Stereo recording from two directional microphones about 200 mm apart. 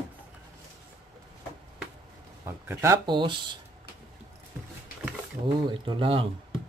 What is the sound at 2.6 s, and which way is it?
Speech, 15° right (ahead or behind).